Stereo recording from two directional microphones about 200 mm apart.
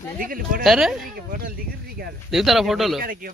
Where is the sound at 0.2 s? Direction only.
45° right (ahead or behind).